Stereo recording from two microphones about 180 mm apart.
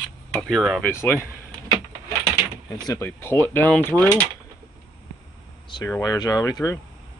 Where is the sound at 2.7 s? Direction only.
20° left (ahead or behind).